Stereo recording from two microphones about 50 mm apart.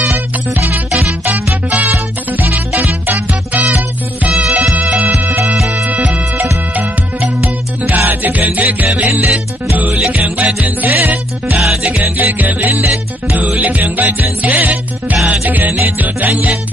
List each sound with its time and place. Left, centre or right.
1.3 s music: right
4.3 s music: centre
5.2 s music: right
5.9 s music: right
7.4 s music: right
9.0 s music: right
9.8 s music: right
11.6 s music: centre
12.0 s music: right